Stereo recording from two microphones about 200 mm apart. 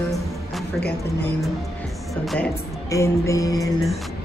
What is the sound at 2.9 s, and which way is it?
Speech, 15° left (ahead or behind).